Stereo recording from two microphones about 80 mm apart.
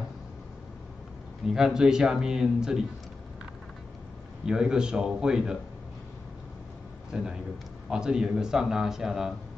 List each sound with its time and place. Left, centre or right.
1.4 s a man's voice: centre
4.5 s a man's voice: centre
7.1 s a man's voice: centre